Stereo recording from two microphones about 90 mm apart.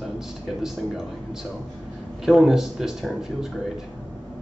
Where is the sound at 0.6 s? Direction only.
5° right (ahead or behind).